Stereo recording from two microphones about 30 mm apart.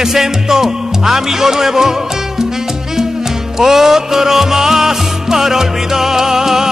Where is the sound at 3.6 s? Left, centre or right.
Centre.